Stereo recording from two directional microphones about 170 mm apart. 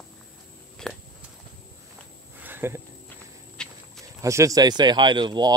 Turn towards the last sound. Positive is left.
turn(degrees=-25)  # may be behind; listen again after turning